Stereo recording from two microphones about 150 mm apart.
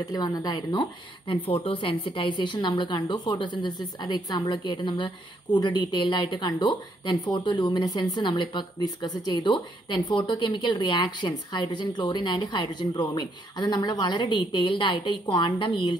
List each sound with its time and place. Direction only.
0.1 s speech: 25° left (ahead or behind)